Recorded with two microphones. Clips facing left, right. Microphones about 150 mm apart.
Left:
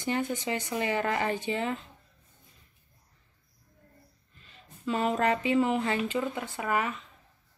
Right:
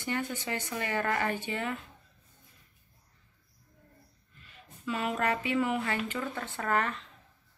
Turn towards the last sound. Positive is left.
turn(degrees=5)  # may be behind; listen again after turning